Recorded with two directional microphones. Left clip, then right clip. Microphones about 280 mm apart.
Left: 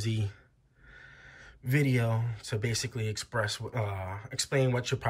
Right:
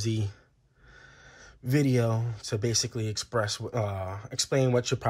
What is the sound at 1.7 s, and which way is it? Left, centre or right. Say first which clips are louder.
Speech: right 3 dB; centre.